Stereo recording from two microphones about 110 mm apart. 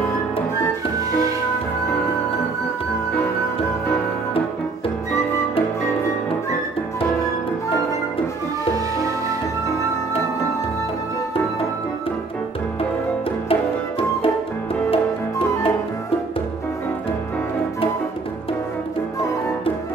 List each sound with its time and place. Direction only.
13.5 s music: 55° left (ahead or behind)